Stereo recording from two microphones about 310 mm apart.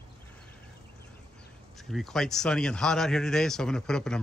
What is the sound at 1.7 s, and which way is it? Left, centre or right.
A man's voice, centre.